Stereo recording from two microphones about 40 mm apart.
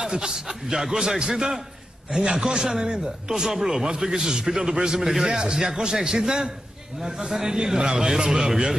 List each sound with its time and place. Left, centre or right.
0.0 s speech: centre